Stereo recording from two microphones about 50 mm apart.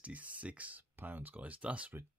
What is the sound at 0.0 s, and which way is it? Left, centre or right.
Speech, right.